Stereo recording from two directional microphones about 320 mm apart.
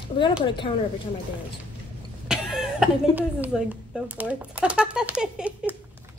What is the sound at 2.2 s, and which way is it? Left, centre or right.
Speech, centre.